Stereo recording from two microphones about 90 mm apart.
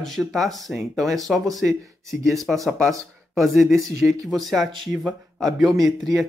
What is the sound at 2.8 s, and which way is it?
Speech, 30° right (ahead or behind).